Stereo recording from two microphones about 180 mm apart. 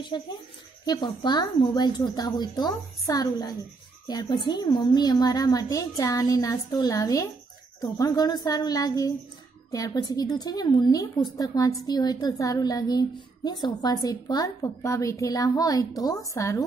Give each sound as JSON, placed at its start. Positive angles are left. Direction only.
{"t": 0.8, "sound": "a woman's voice", "side_deg": 25}